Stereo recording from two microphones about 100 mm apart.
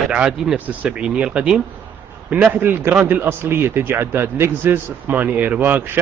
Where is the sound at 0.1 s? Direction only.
10° right (ahead or behind).